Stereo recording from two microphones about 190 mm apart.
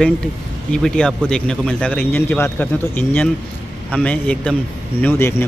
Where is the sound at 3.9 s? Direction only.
10° left (ahead or behind).